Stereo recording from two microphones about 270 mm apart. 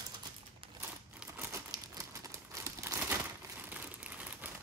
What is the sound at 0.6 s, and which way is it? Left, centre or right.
Typewriter, centre.